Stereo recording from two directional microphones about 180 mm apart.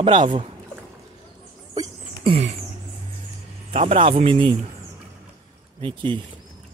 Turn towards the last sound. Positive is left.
turn(degrees=-30)  # may be behind; listen again after turning